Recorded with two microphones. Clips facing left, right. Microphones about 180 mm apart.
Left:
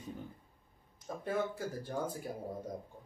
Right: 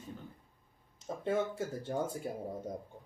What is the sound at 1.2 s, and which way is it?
Speech, 25° right (ahead or behind).